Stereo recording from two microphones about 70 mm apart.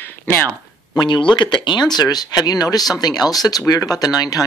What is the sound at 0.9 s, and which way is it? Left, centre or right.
Speech, left.